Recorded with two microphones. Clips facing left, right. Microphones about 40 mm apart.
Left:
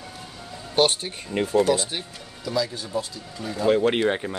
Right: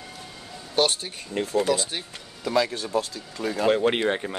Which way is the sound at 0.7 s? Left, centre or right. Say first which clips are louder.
Left 2 dB; centre.